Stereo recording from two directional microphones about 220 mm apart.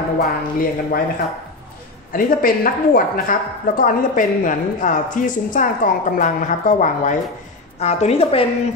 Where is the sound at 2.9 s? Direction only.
40° left (ahead or behind).